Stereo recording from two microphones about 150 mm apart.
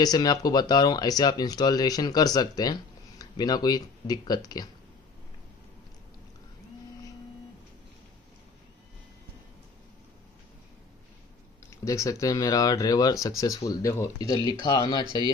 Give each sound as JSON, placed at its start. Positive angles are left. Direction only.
{"t": 0.0, "sound": "speech", "side_deg": 25}
{"t": 11.7, "sound": "speech", "side_deg": 20}